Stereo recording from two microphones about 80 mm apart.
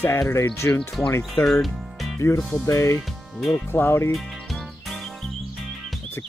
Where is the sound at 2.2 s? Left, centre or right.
Left.